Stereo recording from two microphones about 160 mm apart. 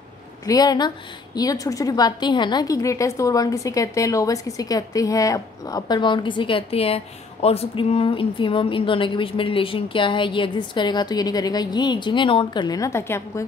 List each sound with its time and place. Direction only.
0.5 s a woman's voice: 25° left (ahead or behind)